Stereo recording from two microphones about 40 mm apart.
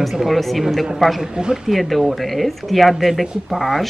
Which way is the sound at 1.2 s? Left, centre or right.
Centre.